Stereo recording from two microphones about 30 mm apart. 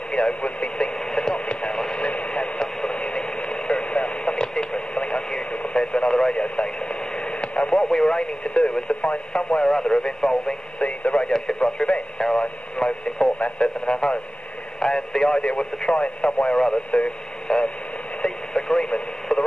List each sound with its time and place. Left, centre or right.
0.1 s speech: left
0.9 s radio: left
1.4 s radio: left
7.9 s speech: left
9.6 s speech: left
10.8 s speech: left
14.8 s speech: left
17.5 s speech: left
18.2 s radio: left